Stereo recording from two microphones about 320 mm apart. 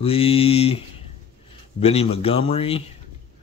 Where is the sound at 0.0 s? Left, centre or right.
Centre.